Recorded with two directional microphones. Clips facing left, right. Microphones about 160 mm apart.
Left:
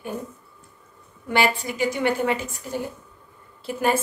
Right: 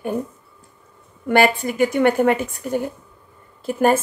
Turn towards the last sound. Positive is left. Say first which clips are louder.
# right 6 dB
turn(degrees=-50)  # may be behind; listen again after turning